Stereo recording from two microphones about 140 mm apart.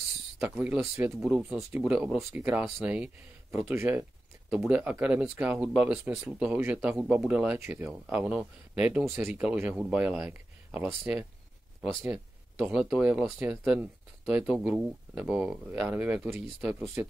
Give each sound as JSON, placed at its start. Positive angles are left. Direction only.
{"t": 0.4, "sound": "speech", "side_deg": -15}
{"t": 1.2, "sound": "speech", "side_deg": -5}
{"t": 11.9, "sound": "speech", "side_deg": -20}